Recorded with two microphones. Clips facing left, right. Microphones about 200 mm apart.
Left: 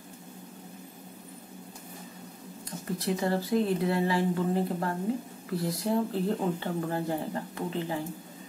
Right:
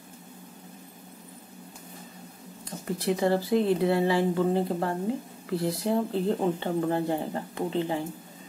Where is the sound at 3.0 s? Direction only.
25° right (ahead or behind).